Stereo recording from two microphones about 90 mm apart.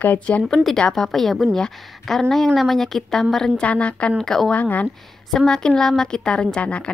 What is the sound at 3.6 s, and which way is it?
Speech, 15° left (ahead or behind).